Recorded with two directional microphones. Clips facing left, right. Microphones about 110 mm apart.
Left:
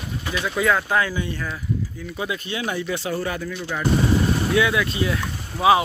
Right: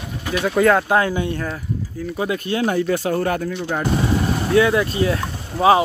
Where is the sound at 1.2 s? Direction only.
55° right (ahead or behind).